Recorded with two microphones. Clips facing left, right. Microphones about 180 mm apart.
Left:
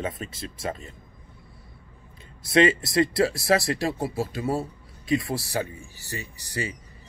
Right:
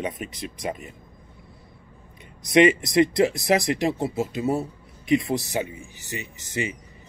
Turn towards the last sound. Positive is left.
turn(degrees=-20)  # may be behind; listen again after turning